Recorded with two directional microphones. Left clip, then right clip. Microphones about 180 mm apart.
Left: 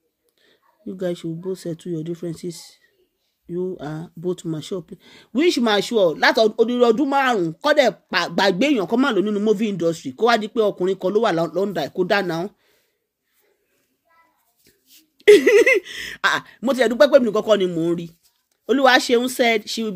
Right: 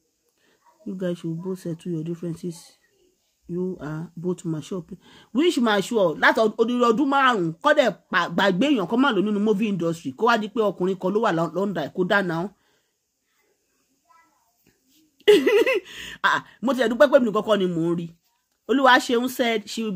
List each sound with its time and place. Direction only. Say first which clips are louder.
0.4 s speech: left 1 dB; 30° left (ahead or behind)
15.1 s speech: left 5 dB; 30° left (ahead or behind)